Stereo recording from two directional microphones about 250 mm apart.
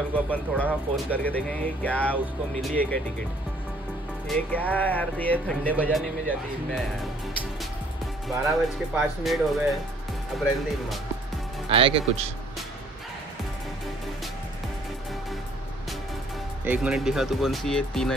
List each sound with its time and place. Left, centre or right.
0.1 s speech: centre
4.3 s speech: centre
8.5 s speech: centre
11.7 s speech: right
16.6 s speech: centre